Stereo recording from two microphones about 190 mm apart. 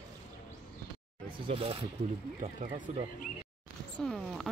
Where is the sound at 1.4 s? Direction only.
30° right (ahead or behind).